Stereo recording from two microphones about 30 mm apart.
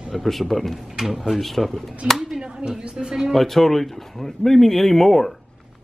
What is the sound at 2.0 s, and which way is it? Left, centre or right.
Speech, right.